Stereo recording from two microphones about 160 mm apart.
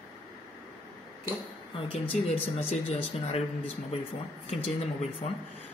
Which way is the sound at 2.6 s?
40° left (ahead or behind).